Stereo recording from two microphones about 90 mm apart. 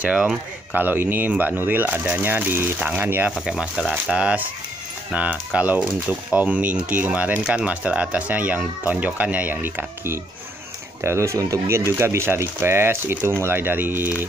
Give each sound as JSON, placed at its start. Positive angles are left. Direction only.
{"t": 0.0, "sound": "speech", "side_deg": -10}
{"t": 3.4, "sound": "speech", "side_deg": -5}